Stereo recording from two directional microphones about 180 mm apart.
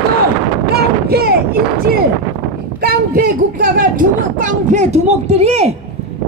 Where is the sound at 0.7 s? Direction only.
60° right (ahead or behind).